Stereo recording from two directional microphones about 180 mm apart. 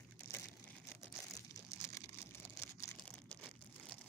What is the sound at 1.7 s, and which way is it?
Crumpling, 15° left (ahead or behind).